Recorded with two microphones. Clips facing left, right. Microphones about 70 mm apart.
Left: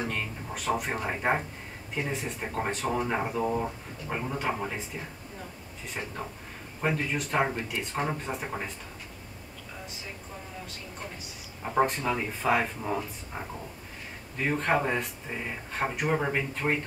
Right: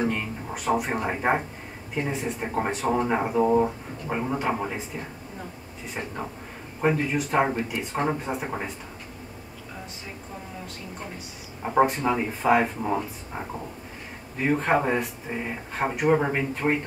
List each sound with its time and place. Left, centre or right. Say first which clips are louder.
0.0 s speech: right 6 dB; centre
6.8 s speech: right 5 dB; centre
11.8 s speech: right 4 dB; centre